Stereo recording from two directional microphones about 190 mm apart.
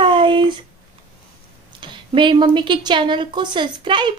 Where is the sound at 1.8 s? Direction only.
25° right (ahead or behind).